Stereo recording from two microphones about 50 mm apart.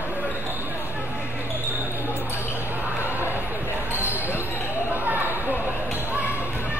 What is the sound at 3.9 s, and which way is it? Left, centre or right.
Basketball bounce, right.